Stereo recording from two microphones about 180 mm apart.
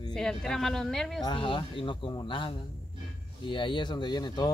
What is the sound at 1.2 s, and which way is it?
Speech, 25° left (ahead or behind).